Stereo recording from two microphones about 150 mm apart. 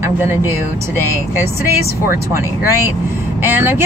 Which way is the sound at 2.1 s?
15° right (ahead or behind).